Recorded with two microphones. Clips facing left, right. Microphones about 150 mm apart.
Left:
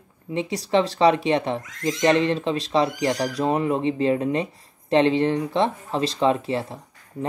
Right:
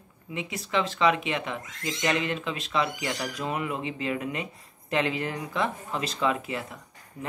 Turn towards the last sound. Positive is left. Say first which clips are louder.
# left 8 dB
turn(degrees=30)  # may be behind; listen again after turning